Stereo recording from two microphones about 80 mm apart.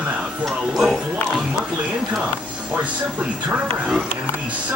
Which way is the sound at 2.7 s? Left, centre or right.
Centre.